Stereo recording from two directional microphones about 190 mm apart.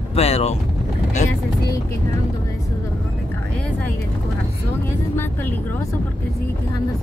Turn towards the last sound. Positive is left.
turn(degrees=10)  # may be behind; listen again after turning